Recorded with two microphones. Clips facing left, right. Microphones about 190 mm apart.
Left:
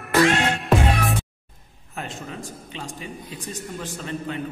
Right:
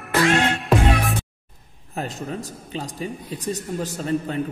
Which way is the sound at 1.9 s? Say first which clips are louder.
Right 5 dB; 40° right (ahead or behind).